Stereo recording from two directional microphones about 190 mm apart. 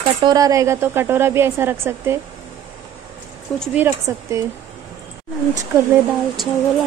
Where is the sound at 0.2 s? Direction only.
20° right (ahead or behind).